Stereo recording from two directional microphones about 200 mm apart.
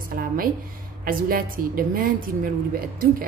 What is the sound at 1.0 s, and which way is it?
A woman's voice, 45° right (ahead or behind).